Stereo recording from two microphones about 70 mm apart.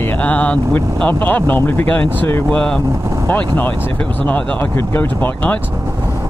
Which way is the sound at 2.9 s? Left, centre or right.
Right.